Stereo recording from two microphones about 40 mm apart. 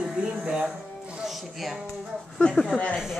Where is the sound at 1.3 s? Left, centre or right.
Centre.